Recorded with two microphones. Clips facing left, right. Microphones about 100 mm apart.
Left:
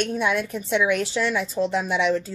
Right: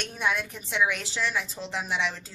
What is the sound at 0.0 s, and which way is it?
A woman's voice, 55° left (ahead or behind).